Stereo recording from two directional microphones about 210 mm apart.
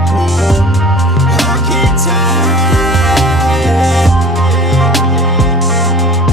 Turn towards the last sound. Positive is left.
turn(degrees=0)  # may be behind; listen again after turning